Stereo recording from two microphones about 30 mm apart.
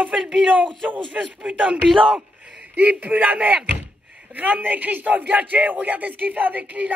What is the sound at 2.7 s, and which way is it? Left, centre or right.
Speech, right.